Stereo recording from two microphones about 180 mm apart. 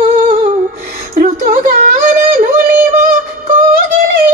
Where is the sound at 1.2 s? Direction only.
50° right (ahead or behind).